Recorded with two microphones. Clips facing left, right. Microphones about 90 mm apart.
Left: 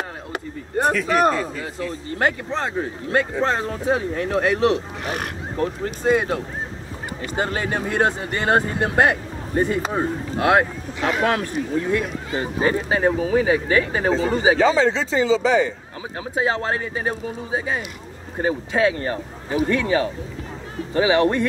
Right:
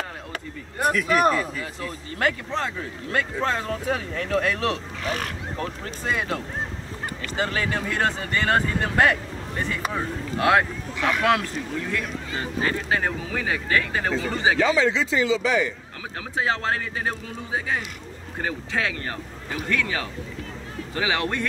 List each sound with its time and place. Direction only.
0.7 s speech: 35° left (ahead or behind)
6.0 s speech: 30° left (ahead or behind)
14.1 s speech: 35° left (ahead or behind)